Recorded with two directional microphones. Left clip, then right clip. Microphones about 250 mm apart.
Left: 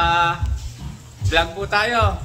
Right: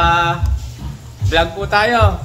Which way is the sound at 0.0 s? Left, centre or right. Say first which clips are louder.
Right 3 dB; centre.